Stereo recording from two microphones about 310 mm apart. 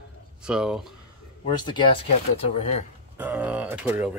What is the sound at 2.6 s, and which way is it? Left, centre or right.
Speech, left.